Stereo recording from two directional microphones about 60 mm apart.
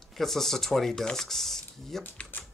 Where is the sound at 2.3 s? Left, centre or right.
Left.